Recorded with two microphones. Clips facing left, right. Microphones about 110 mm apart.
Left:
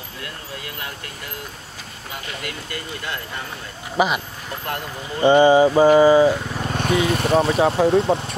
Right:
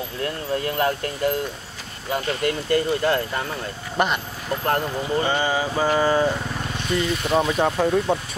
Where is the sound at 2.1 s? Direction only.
40° right (ahead or behind).